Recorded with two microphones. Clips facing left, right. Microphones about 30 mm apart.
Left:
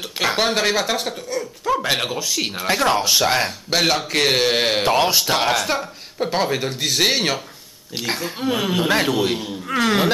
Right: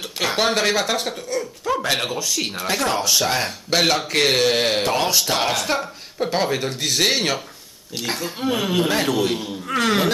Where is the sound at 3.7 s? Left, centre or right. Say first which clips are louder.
Right 1 dB; centre.